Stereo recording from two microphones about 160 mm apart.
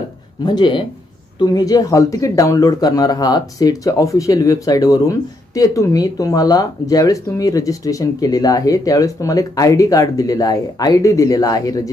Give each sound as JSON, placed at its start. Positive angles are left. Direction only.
{"t": 0.4, "sound": "speech", "side_deg": 25}